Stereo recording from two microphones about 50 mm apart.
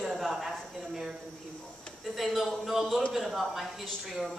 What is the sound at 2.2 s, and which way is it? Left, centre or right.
Speech, centre.